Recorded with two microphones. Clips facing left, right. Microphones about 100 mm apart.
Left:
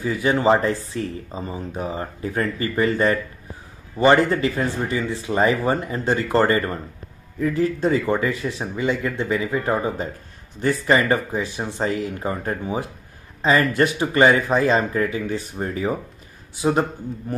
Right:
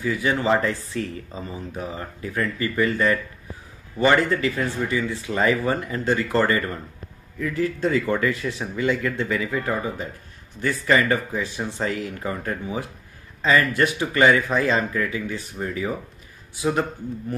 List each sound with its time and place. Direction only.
0.0 s speech: 30° left (ahead or behind)